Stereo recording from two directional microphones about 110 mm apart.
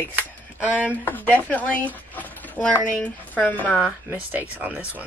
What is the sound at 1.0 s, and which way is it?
Speech, 15° left (ahead or behind).